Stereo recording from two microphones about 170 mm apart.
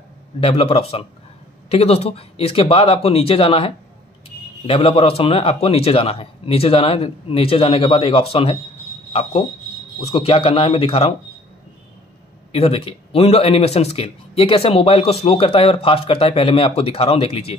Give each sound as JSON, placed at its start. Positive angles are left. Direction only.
{"t": 0.4, "sound": "speech", "side_deg": 35}
{"t": 9.9, "sound": "speech", "side_deg": 35}
{"t": 12.5, "sound": "speech", "side_deg": 35}